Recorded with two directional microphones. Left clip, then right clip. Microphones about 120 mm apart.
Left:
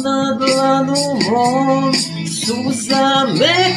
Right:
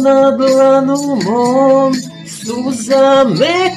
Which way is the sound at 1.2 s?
50° left (ahead or behind).